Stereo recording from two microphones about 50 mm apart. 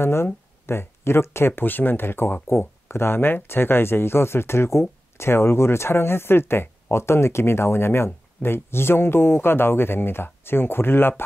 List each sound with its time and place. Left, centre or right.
0.0 s speech: left